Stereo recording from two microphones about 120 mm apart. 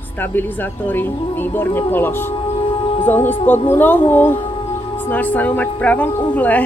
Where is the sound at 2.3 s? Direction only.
50° left (ahead or behind).